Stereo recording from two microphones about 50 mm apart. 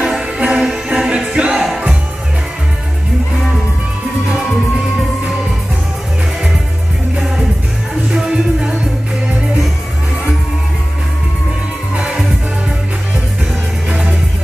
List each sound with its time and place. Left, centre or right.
0.0 s music: centre
8.1 s music: centre
13.8 s music: centre